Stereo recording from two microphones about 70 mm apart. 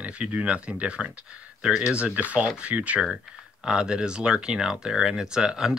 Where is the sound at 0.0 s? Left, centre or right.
Centre.